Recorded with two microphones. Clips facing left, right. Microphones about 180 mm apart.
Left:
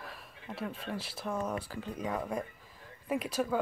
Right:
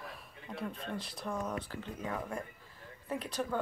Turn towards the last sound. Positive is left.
turn(degrees=10)  # may be behind; listen again after turning